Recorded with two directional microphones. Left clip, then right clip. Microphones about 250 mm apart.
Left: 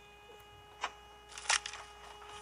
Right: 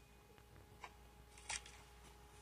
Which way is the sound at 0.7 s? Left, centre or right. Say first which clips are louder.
Left 17 dB; left.